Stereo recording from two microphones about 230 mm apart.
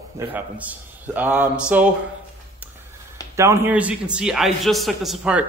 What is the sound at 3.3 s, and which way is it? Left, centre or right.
A man's voice, centre.